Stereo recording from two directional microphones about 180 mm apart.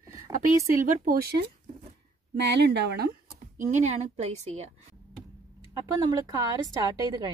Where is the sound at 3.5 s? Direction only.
40° right (ahead or behind).